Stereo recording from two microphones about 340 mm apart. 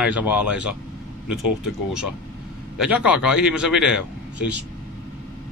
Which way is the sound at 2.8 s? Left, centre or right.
Centre.